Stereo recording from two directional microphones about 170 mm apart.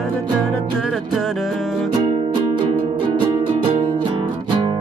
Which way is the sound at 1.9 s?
25° right (ahead or behind).